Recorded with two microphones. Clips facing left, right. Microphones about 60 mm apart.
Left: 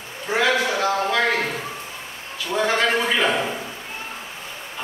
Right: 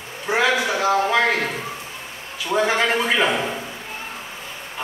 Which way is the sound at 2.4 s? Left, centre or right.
Centre.